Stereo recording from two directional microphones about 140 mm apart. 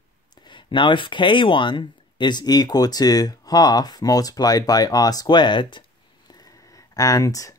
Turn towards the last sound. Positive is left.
turn(degrees=25)  # may be behind; listen again after turning